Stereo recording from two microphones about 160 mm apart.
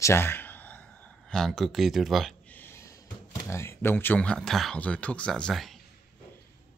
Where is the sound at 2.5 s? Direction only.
15° left (ahead or behind).